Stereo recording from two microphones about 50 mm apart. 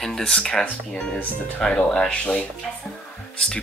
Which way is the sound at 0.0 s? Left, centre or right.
Centre.